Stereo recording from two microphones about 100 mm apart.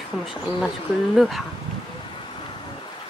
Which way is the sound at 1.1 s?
Centre (ahead or behind).